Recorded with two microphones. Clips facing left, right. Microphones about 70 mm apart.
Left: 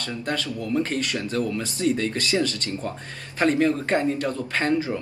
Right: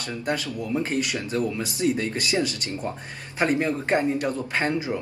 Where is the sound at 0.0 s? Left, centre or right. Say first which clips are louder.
Even; centre.